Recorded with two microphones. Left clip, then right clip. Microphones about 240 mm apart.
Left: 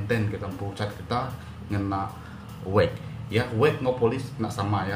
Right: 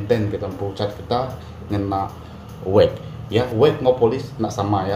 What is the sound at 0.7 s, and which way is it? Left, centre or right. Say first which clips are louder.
Speech: right 7 dB; centre.